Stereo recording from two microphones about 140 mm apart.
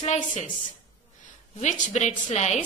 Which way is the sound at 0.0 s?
60° left (ahead or behind).